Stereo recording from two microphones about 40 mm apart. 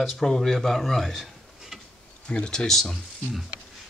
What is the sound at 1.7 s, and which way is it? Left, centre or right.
Insect, centre.